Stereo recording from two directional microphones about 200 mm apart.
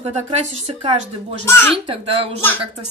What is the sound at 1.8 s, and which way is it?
Speech, 30° right (ahead or behind).